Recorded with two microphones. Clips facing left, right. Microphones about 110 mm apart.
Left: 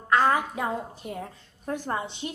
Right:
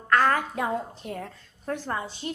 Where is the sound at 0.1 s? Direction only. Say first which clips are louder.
Even; 15° left (ahead or behind).